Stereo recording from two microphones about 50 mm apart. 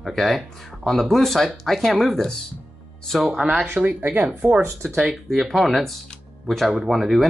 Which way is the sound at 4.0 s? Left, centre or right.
Right.